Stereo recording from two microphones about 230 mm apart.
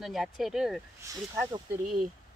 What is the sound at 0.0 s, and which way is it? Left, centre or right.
Speech, centre.